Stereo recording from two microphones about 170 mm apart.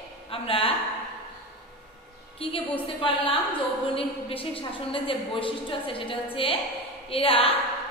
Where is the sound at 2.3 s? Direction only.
35° left (ahead or behind).